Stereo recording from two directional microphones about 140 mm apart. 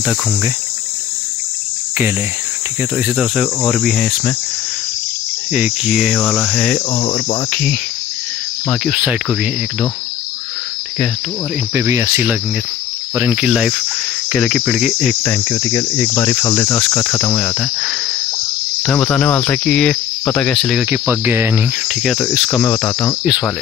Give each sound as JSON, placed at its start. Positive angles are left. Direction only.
{"t": 3.0, "sound": "cricket", "side_deg": 0}
{"t": 5.5, "sound": "cricket", "side_deg": -5}
{"t": 6.9, "sound": "cricket", "side_deg": 30}
{"t": 8.8, "sound": "cricket", "side_deg": 0}
{"t": 11.7, "sound": "speech", "side_deg": -15}
{"t": 14.3, "sound": "cricket", "side_deg": 5}
{"t": 15.2, "sound": "cricket", "side_deg": 20}
{"t": 17.4, "sound": "cricket", "side_deg": 5}
{"t": 20.9, "sound": "speech", "side_deg": -15}
{"t": 21.8, "sound": "cricket", "side_deg": 0}
{"t": 22.6, "sound": "cricket", "side_deg": 10}